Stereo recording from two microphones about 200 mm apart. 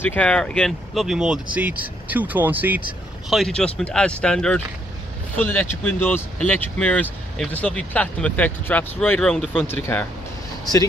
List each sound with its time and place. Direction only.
0.0 s speech: 5° left (ahead or behind); by 2.8 s 10° right (ahead or behind)
3.3 s speech: centre (ahead or behind); by 10.8 s 20° left (ahead or behind)